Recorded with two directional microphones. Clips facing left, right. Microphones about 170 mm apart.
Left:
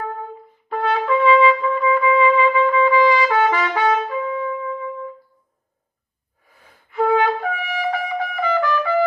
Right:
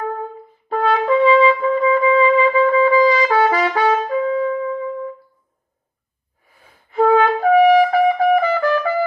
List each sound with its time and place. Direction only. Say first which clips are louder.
0.7 s trumpet: right 3 dB; 30° right (ahead or behind)
6.9 s brass instrument: right 4 dB; 30° right (ahead or behind)
8.4 s trumpet: right 3 dB; 40° right (ahead or behind)